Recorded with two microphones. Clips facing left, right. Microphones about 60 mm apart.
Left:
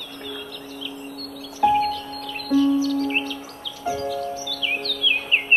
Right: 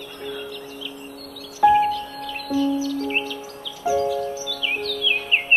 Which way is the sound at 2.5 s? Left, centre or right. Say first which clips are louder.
Left 3 dB; centre.